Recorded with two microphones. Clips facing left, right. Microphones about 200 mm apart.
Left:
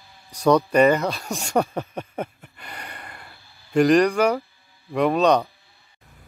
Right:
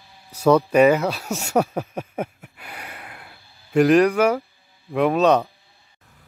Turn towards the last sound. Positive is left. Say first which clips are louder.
# right 1 dB
turn(degrees=-5)  # may be behind; listen again after turning